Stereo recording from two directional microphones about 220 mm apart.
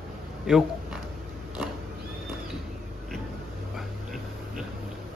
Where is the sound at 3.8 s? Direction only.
Centre (ahead or behind).